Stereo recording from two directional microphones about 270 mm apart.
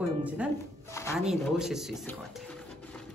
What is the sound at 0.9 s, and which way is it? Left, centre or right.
Speech, centre.